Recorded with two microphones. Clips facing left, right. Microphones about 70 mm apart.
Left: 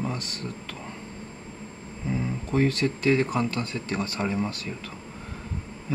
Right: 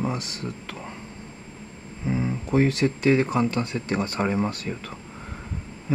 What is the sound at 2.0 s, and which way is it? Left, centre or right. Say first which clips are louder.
Speech: right 3 dB; centre.